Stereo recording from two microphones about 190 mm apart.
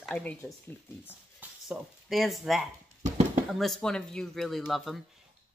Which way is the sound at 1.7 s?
Centre (ahead or behind).